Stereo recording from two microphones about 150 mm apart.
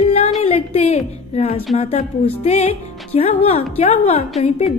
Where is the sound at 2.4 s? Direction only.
45° left (ahead or behind).